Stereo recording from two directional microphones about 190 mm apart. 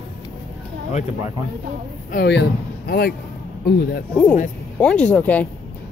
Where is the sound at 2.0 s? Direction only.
55° left (ahead or behind).